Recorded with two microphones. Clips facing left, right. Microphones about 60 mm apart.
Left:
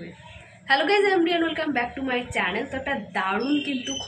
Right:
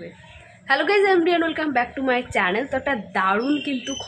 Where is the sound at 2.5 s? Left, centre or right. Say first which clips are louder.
Right 5 dB; right.